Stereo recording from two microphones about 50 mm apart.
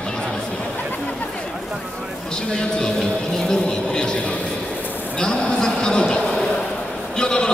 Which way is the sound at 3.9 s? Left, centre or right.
Centre.